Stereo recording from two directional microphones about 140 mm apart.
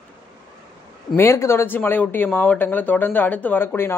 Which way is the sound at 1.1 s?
20° left (ahead or behind).